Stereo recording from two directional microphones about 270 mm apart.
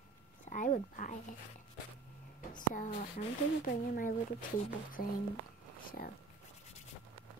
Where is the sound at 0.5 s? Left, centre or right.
Left.